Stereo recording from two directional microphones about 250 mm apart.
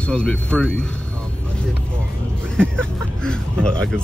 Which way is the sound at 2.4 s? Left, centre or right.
Centre.